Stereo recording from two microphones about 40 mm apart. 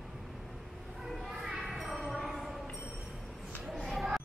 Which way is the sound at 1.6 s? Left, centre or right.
Centre.